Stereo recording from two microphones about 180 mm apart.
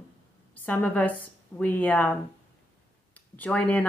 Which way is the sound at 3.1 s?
10° left (ahead or behind).